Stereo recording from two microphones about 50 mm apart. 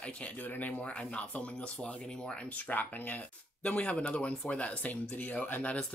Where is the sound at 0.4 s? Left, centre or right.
Left.